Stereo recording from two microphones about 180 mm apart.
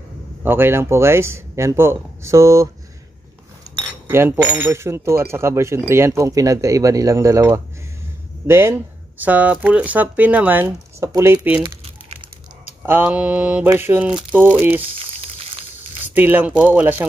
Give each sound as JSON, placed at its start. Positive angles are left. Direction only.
{"t": 0.4, "sound": "speech", "side_deg": -10}
{"t": 4.1, "sound": "speech", "side_deg": -10}
{"t": 11.6, "sound": "crumpling", "side_deg": -30}
{"t": 12.8, "sound": "speech", "side_deg": -10}
{"t": 16.0, "sound": "speech", "side_deg": -10}